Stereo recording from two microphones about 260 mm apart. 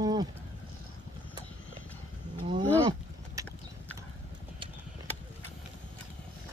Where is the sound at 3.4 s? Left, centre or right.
Centre.